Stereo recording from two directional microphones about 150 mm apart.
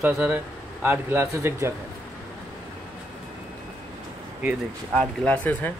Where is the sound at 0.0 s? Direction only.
10° right (ahead or behind).